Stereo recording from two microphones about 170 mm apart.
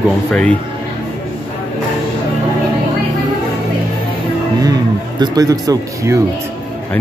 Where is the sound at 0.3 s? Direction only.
5° left (ahead or behind).